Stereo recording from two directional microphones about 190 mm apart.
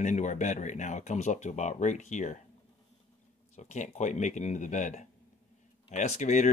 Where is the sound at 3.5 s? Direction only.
40° left (ahead or behind).